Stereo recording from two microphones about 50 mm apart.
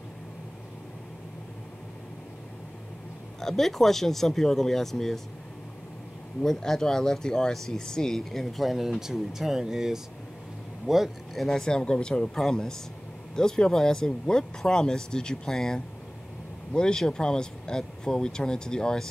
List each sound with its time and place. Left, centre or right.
3.3 s speech: centre
6.4 s speech: centre
11.4 s speech: centre